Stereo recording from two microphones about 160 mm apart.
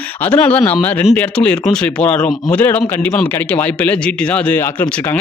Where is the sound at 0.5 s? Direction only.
10° left (ahead or behind).